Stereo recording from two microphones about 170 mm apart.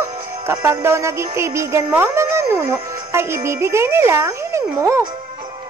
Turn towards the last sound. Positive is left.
turn(degrees=-15)  # may be behind; listen again after turning